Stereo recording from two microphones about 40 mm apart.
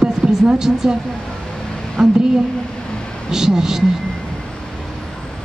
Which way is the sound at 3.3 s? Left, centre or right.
Centre.